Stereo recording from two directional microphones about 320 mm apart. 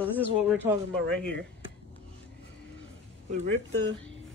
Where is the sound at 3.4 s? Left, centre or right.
Right.